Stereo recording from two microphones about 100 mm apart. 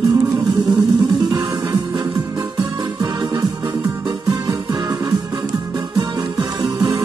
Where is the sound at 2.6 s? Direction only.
40° right (ahead or behind).